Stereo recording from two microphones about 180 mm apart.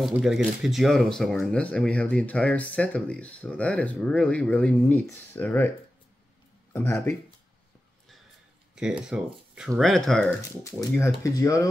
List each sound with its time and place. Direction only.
0.0 s speech: centre (ahead or behind)
6.7 s speech: 15° left (ahead or behind)
8.7 s speech: 5° right (ahead or behind)
10.6 s speech: 15° left (ahead or behind)